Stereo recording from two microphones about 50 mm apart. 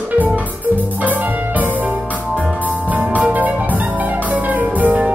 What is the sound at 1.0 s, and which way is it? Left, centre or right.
Music, right.